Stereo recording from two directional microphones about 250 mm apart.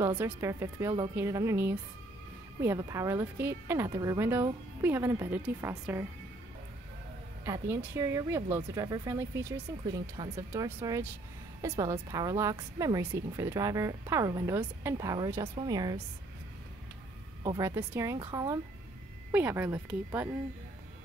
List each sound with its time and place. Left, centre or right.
0.0 s a woman's voice: centre
7.4 s a woman's voice: centre
17.4 s a woman's voice: centre